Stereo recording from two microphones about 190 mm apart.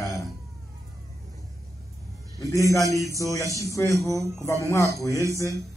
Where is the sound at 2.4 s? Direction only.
15° left (ahead or behind).